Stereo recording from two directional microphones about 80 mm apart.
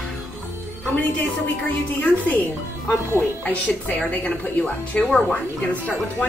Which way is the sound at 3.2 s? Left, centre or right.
Centre.